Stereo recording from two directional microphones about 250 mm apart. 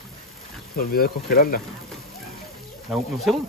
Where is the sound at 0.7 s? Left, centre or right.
Left.